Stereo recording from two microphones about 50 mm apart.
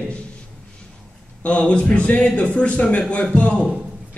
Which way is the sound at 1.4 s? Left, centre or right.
Left.